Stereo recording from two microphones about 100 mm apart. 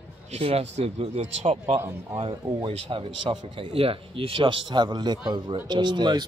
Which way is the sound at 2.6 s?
65° right (ahead or behind).